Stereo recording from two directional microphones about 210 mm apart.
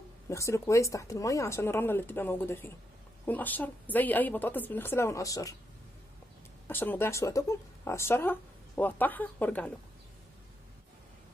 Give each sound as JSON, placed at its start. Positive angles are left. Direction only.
{"t": 0.3, "sound": "speech", "side_deg": 15}
{"t": 6.7, "sound": "speech", "side_deg": 10}